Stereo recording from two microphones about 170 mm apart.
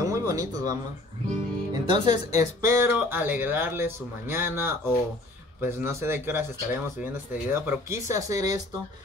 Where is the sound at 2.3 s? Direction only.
15° right (ahead or behind).